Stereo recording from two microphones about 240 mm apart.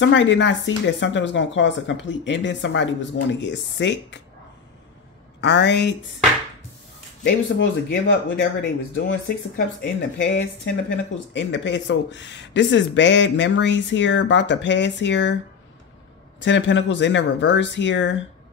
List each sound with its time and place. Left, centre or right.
0.0 s speech: left
5.4 s speech: left
7.2 s speech: left
16.3 s speech: left